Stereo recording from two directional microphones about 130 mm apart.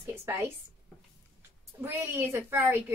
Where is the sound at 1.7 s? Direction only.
15° right (ahead or behind).